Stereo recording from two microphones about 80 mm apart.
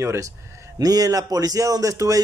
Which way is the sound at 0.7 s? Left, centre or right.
Right.